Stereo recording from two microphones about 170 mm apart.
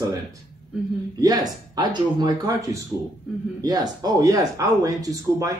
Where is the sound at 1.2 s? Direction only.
25° right (ahead or behind).